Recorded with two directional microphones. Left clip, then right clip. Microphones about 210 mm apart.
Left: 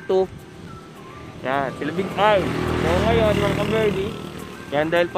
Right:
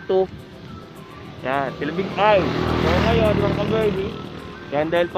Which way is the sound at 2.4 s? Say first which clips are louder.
Right 2 dB; 35° right (ahead or behind).